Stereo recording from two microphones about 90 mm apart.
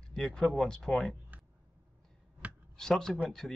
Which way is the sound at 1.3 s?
20° right (ahead or behind).